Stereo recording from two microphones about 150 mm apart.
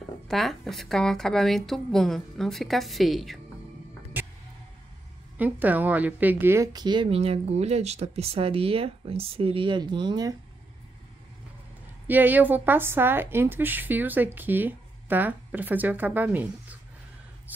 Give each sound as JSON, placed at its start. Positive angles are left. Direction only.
{"t": 0.3, "sound": "a woman's voice", "side_deg": 0}
{"t": 4.2, "sound": "music", "side_deg": -10}
{"t": 5.4, "sound": "a woman's voice", "side_deg": -10}
{"t": 12.1, "sound": "a woman's voice", "side_deg": -10}